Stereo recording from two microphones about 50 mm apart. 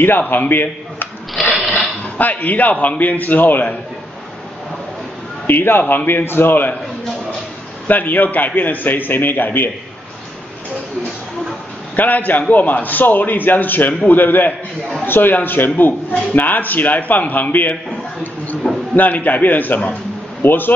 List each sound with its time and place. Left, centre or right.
0.3 s a man's voice: left
1.5 s a sound: centre
2.1 s a man's voice: left
5.5 s a man's voice: left
7.9 s a man's voice: left
11.9 s a man's voice: left
18.6 s a sound: centre
18.9 s a man's voice: left